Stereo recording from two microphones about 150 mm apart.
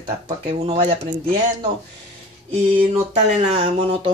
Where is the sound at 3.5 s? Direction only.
40° right (ahead or behind).